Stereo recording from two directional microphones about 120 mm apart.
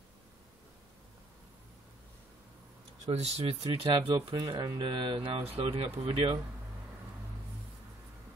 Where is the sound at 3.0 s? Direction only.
60° right (ahead or behind).